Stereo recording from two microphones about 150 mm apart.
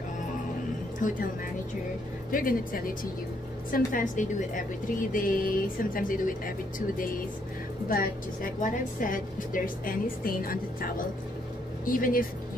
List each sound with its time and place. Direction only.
1.0 s a woman's voice: 60° left (ahead or behind)
2.3 s a woman's voice: 70° left (ahead or behind)
7.9 s a woman's voice: 70° left (ahead or behind)